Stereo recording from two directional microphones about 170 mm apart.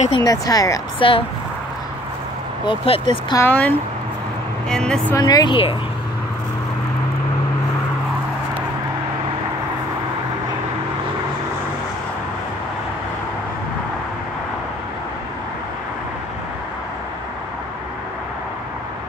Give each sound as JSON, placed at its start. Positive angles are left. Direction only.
{"t": 0.2, "sound": "speech", "side_deg": 20}
{"t": 2.6, "sound": "speech", "side_deg": 30}
{"t": 3.3, "sound": "speech", "side_deg": 10}
{"t": 5.1, "sound": "speech", "side_deg": 25}